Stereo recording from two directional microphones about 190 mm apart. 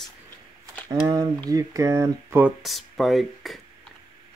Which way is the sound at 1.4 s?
20° right (ahead or behind).